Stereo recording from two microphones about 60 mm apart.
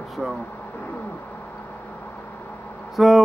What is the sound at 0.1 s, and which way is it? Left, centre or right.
Speech, centre.